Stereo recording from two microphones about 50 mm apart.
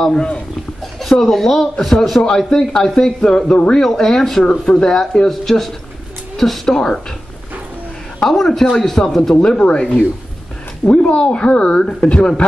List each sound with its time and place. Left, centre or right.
0.0 s speech: centre
1.2 s a man's voice: centre
3.7 s a man's voice: centre
8.3 s speech: centre
9.3 s speech: centre